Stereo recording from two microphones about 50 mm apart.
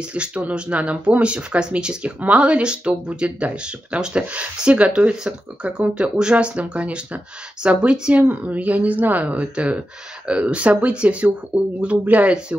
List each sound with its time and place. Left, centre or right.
0.1 s speech: right